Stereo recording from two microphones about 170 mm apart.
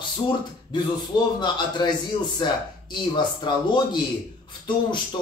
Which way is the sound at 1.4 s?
25° left (ahead or behind).